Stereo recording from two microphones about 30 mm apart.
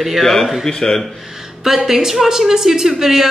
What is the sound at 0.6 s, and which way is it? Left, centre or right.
Speech, centre.